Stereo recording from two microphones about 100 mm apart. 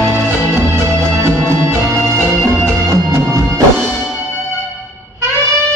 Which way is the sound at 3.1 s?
30° right (ahead or behind).